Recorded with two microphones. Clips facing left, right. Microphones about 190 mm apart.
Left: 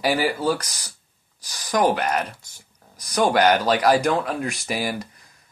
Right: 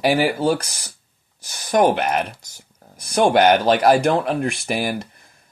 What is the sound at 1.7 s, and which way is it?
A man's voice, 60° right (ahead or behind).